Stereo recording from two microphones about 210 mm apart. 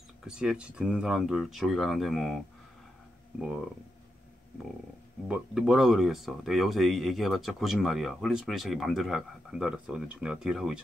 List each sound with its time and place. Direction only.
0.2 s speech: 5° right (ahead or behind)
5.3 s speech: centre (ahead or behind)